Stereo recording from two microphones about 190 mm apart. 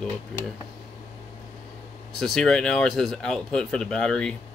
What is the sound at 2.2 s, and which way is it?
Speech, centre (ahead or behind).